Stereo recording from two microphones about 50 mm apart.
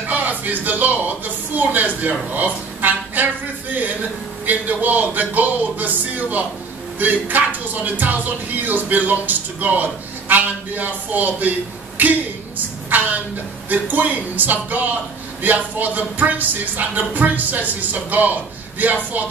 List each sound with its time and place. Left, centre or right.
0.1 s speech: right
4.5 s a man's voice: right